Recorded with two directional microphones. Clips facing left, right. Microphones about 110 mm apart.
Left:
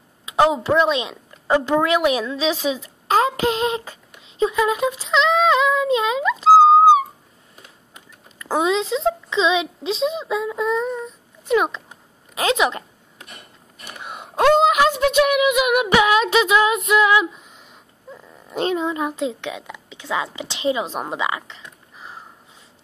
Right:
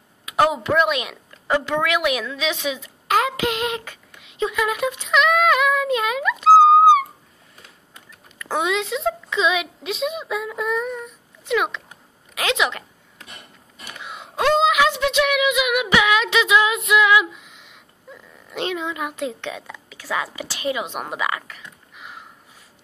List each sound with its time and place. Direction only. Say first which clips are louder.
0.2 s speech: left 2 dB; 25° left (ahead or behind)
1.7 s a woman's voice: left 5 dB; 35° left (ahead or behind)
4.2 s child singing: left 4 dB; 30° left (ahead or behind)
8.5 s a child's voice: left 3 dB; 30° left (ahead or behind)
14.0 s a sound: left 4 dB; 50° left (ahead or behind)
14.6 s female singing: left 2 dB; 45° left (ahead or behind)
19.4 s a woman's voice: left 1 dB; 15° left (ahead or behind); by 22.2 s 35° left (ahead or behind)